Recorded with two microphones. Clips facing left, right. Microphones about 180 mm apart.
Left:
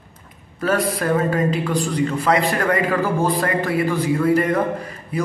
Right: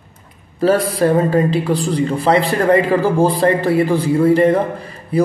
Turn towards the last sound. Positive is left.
turn(degrees=-30)  # may be behind; listen again after turning